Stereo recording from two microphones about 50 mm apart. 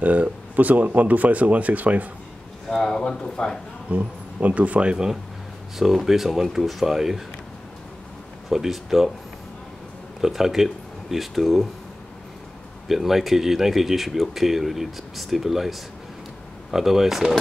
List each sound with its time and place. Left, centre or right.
0.0 s speech: right
2.7 s speech: centre
3.9 s speech: right; by 7.2 s centre
8.5 s speech: centre
10.2 s speech: centre
12.8 s speech: centre
16.7 s speech: centre